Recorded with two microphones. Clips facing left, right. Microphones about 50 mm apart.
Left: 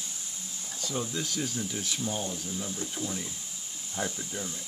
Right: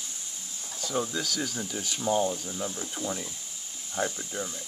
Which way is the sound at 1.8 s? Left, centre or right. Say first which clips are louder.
Even; right.